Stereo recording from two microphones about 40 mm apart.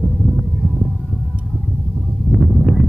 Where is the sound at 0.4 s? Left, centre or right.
Centre.